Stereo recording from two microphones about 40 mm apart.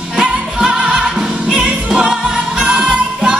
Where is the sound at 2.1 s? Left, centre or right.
Centre.